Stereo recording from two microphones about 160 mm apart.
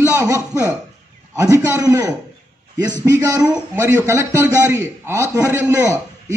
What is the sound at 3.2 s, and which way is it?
A man's voice, 20° right (ahead or behind).